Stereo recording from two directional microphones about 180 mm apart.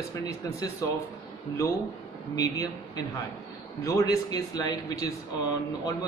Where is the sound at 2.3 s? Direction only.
20° left (ahead or behind).